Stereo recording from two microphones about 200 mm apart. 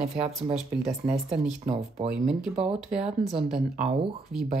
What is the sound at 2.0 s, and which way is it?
Speech, 5° right (ahead or behind).